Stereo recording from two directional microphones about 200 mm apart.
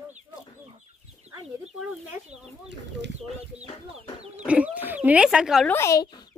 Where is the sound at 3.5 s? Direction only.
5° right (ahead or behind).